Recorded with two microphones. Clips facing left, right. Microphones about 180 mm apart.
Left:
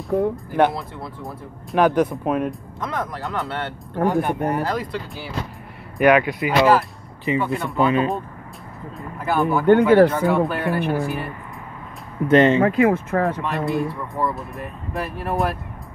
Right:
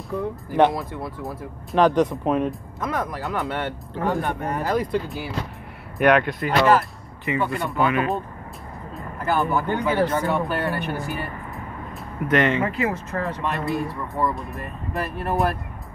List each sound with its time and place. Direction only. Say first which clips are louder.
0.1 s speech: left 7 dB; 60° left (ahead or behind)
1.2 s speech: right 2 dB; 5° left (ahead or behind)
2.8 s speech: right 1 dB; 10° right (ahead or behind)
4.0 s speech: left 4 dB; 15° left (ahead or behind)
5.9 s speech: left 2 dB; 5° left (ahead or behind)
7.7 s speech: left 4 dB; 25° left (ahead or behind)
8.9 s vehicle: left 1 dB; centre (ahead or behind)
9.7 s speech: left 9 dB; 60° left (ahead or behind)
10.2 s speech: left 4 dB; centre (ahead or behind)
12.3 s speech: left 6 dB; 30° left (ahead or behind)
12.6 s speech: left 8 dB; 55° left (ahead or behind)
13.4 s speech: left 2 dB; centre (ahead or behind)